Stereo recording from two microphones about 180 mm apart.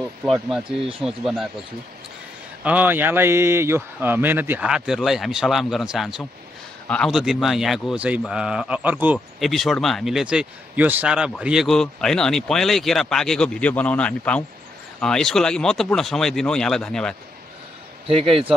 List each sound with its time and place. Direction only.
0.2 s speech: 5° right (ahead or behind)
2.6 s speech: 10° right (ahead or behind)
18.0 s a man's voice: 30° right (ahead or behind)